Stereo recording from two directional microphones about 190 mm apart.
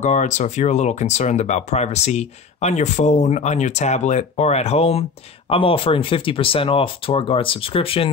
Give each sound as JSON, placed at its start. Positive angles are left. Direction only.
{"t": 0.0, "sound": "speech", "side_deg": 40}